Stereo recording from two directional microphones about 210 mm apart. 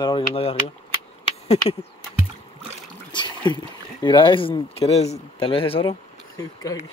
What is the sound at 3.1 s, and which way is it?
Speech, 20° left (ahead or behind).